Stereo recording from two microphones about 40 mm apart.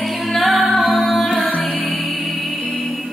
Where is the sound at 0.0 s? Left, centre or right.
Centre.